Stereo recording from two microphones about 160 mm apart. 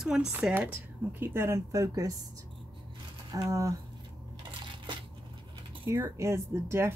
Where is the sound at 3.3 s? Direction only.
20° right (ahead or behind).